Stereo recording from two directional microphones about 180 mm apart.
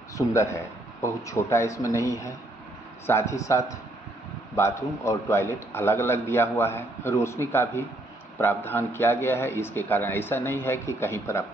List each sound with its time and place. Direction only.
0.3 s a man's voice: 15° left (ahead or behind)